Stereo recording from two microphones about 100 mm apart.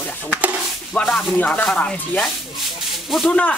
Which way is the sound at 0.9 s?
5° left (ahead or behind).